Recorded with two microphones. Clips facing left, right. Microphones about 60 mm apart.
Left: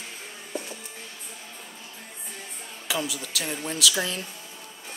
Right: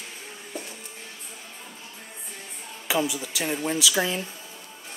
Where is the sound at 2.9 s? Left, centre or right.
Centre.